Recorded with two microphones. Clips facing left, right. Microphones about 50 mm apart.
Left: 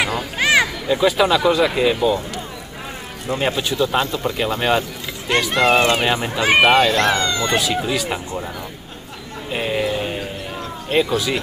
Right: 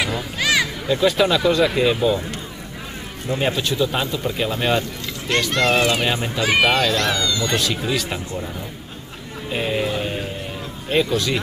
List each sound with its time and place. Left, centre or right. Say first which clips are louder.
0.0 s a sound: left 3 dB; left
0.8 s speech: left 1 dB; centre
3.3 s speech: left 1 dB; centre
6.6 s speech: left 5 dB; left
7.5 s speech: left 2 dB; centre
9.5 s a sound: left 1 dB; centre
10.9 s speech: left 1 dB; centre